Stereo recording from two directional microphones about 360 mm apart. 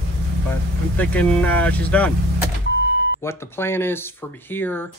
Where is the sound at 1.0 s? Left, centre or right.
Centre.